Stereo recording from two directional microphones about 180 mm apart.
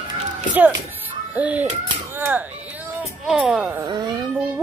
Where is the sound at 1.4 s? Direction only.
10° right (ahead or behind).